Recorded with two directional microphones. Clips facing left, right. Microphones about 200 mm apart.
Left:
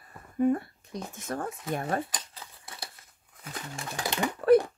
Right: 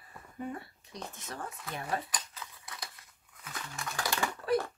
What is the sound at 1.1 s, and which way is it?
Speech, 50° left (ahead or behind).